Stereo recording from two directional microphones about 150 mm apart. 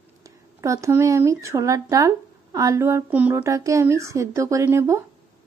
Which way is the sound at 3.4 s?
20° right (ahead or behind).